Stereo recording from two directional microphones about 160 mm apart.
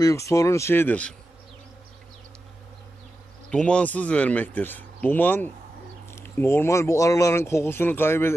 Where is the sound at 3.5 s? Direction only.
5° left (ahead or behind).